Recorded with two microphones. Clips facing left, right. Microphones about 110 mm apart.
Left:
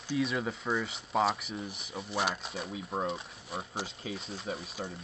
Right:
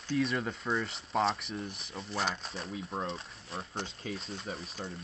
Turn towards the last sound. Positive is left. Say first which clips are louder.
# left 2 dB
turn(degrees=0)  # may be behind; listen again after turning